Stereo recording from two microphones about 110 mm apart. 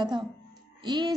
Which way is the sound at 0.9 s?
40° right (ahead or behind).